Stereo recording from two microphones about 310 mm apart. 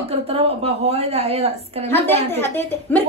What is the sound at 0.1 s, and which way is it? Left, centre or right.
A woman's voice, centre.